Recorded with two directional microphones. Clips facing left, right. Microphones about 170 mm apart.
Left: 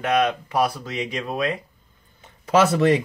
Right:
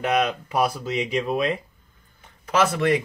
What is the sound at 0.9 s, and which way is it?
Speech, 20° right (ahead or behind).